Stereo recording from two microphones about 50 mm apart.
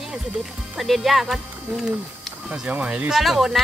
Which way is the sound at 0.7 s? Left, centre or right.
Centre.